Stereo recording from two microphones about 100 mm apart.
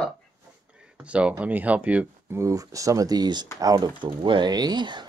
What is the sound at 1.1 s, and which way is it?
Speech, 10° right (ahead or behind).